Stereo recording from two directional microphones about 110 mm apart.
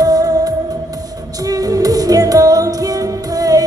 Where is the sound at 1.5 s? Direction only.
35° right (ahead or behind).